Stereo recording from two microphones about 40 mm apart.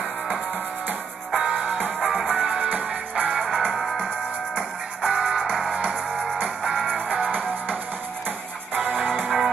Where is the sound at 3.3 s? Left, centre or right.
Centre.